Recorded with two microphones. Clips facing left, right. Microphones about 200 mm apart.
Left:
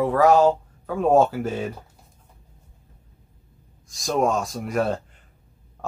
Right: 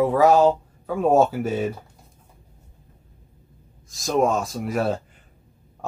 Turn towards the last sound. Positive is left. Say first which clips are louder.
# even
turn(degrees=-5)  # may be behind; listen again after turning